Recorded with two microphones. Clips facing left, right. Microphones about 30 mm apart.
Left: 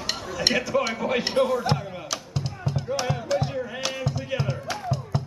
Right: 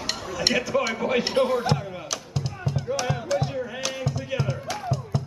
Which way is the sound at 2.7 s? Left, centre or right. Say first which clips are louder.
Even; centre.